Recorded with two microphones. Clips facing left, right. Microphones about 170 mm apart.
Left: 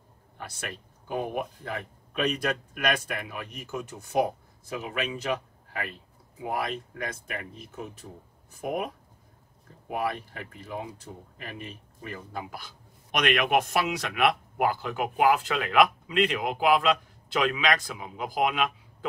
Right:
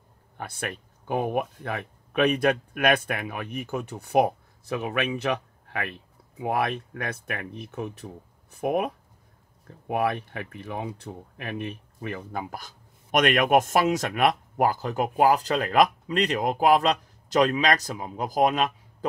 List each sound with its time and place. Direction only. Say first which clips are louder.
0.4 s speech: right 5 dB; 55° right (ahead or behind)
6.4 s speech: right 5 dB; 65° right (ahead or behind)
9.9 s speech: right 4 dB; 65° right (ahead or behind); by 19.0 s 40° right (ahead or behind)